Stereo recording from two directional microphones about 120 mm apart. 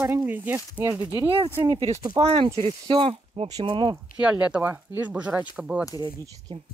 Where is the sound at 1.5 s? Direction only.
20° right (ahead or behind).